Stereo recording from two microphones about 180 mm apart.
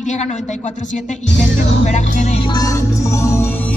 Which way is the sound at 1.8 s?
40° left (ahead or behind).